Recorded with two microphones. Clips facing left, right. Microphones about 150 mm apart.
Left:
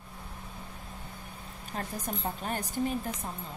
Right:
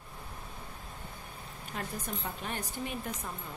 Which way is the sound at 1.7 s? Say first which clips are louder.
Left 3 dB; 35° left (ahead or behind).